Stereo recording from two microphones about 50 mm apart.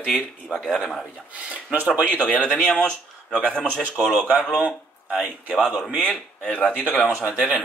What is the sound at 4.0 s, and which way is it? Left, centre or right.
Speech, right.